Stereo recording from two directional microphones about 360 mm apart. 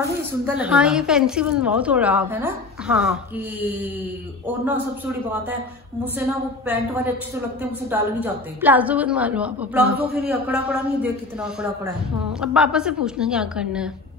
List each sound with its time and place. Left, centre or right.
0.3 s a woman's voice: centre
6.1 s a woman's voice: centre